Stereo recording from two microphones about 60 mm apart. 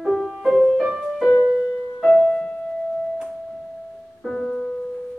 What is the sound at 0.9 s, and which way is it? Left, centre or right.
Music, centre.